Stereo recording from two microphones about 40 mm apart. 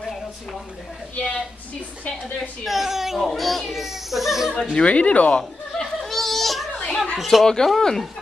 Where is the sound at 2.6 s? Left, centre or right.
Centre.